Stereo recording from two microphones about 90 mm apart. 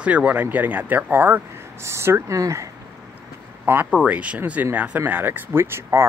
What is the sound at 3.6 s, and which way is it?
Speech, 25° right (ahead or behind).